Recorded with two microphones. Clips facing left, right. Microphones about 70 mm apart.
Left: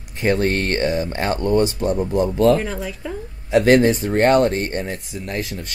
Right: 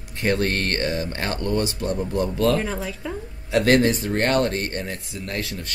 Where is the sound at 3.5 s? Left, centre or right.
Centre.